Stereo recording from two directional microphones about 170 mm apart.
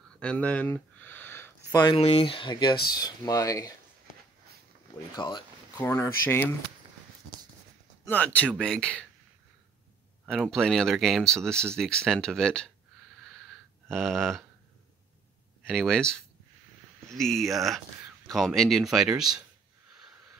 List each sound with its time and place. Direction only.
0.2 s speech: 5° left (ahead or behind)
2.0 s speech: 35° left (ahead or behind)
5.1 s speech: 25° left (ahead or behind)
8.1 s speech: 10° left (ahead or behind)
10.2 s speech: centre (ahead or behind)
13.8 s speech: centre (ahead or behind)
15.6 s speech: 5° left (ahead or behind)